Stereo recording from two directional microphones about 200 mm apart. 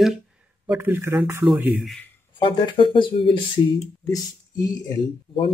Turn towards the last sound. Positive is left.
turn(degrees=20)  # may be behind; listen again after turning